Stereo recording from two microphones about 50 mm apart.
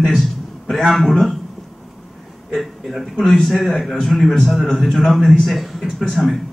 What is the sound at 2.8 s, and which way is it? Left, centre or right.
Speech, centre.